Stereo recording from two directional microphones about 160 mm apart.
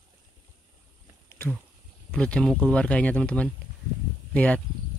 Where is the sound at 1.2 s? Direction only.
15° left (ahead or behind).